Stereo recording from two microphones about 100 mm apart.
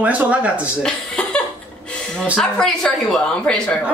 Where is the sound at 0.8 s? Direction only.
10° left (ahead or behind).